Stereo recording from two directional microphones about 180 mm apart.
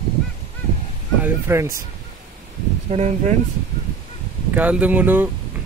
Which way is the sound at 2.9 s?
40° right (ahead or behind).